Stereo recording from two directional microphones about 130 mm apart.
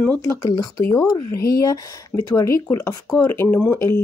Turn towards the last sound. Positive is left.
turn(degrees=20)  # may be behind; listen again after turning